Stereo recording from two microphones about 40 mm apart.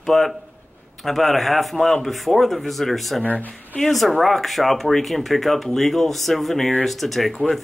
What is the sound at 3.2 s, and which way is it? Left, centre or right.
Speech, left.